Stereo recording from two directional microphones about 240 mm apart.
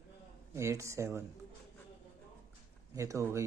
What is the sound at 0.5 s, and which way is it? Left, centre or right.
Speech, centre.